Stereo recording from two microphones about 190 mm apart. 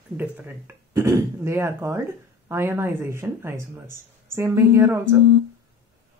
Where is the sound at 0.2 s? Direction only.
10° right (ahead or behind).